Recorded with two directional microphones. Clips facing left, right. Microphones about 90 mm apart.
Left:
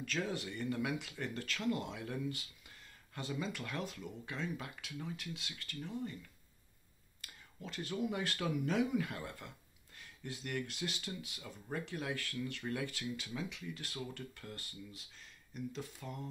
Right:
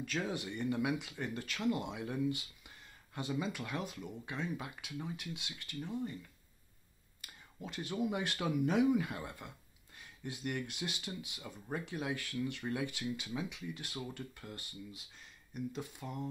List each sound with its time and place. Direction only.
0.0 s speech: 10° right (ahead or behind)
7.2 s speech: 15° right (ahead or behind)